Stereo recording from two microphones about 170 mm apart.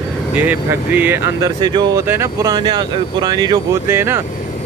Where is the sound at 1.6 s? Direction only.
25° right (ahead or behind).